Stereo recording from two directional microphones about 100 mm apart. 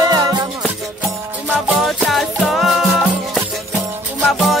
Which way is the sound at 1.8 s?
Centre (ahead or behind).